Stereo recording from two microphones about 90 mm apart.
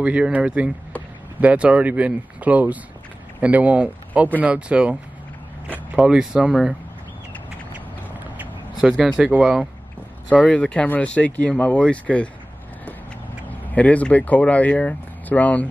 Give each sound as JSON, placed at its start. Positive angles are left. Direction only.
{"t": 0.0, "sound": "speech", "side_deg": -10}
{"t": 5.9, "sound": "speech", "side_deg": -10}
{"t": 8.8, "sound": "speech", "side_deg": -5}
{"t": 10.4, "sound": "speech", "side_deg": 15}
{"t": 13.5, "sound": "speech", "side_deg": 15}